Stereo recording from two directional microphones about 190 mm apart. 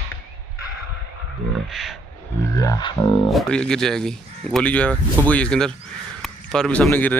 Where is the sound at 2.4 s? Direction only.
20° left (ahead or behind).